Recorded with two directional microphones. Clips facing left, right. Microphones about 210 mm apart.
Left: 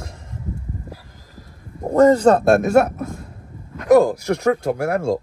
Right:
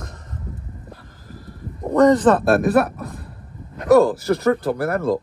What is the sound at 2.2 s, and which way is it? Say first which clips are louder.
Speech: left 2 dB; 45° left (ahead or behind).